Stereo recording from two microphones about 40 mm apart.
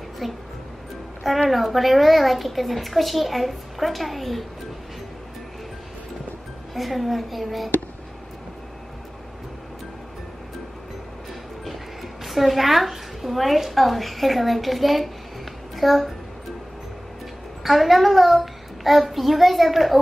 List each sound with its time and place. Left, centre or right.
0.2 s a child's voice: centre
1.5 s a child's voice: centre
6.7 s a child's voice: centre
11.6 s a woman's voice: centre
17.6 s a child's voice: centre